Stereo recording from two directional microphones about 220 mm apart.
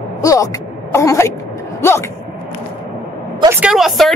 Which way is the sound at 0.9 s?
15° left (ahead or behind).